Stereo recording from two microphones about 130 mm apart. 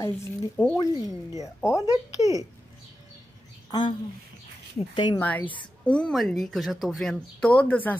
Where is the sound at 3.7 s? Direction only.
35° left (ahead or behind).